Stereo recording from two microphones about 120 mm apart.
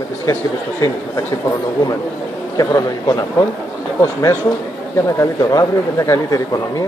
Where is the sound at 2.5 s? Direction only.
30° left (ahead or behind).